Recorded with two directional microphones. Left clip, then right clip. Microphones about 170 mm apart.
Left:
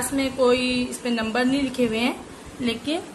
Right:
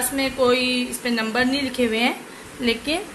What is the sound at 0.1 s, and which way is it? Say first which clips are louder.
A woman's voice: right 1 dB; 5° right (ahead or behind).